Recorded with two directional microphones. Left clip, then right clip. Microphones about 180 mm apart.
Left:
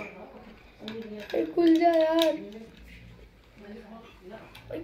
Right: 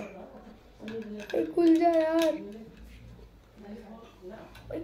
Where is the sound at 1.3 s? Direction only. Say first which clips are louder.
Left 1 dB; 15° left (ahead or behind).